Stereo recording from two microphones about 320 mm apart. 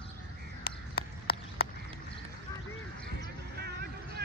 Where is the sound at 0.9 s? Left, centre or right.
Left.